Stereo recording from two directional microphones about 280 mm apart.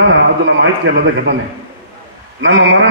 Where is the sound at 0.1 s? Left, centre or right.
Right.